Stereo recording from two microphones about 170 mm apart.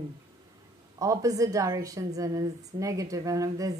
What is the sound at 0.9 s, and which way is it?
Speech, 20° right (ahead or behind).